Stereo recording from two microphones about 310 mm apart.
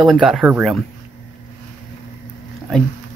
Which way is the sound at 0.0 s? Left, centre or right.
Centre.